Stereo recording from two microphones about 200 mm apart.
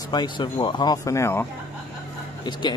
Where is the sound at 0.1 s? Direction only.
20° left (ahead or behind).